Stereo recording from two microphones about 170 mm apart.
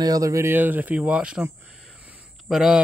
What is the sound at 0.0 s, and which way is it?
Speech, 20° right (ahead or behind).